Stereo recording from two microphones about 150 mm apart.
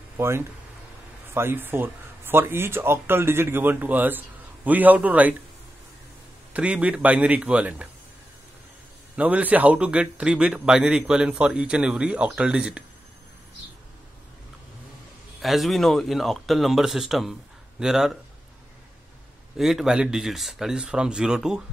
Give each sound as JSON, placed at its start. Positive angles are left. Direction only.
{"t": 0.2, "sound": "speech", "side_deg": -15}
{"t": 6.5, "sound": "speech", "side_deg": -10}
{"t": 9.1, "sound": "speech", "side_deg": -10}
{"t": 15.4, "sound": "speech", "side_deg": 0}
{"t": 19.5, "sound": "speech", "side_deg": 0}